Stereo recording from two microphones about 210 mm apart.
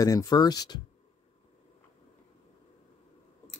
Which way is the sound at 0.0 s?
15° left (ahead or behind).